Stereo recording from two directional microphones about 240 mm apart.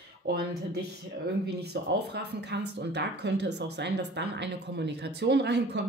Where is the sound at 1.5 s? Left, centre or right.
Right.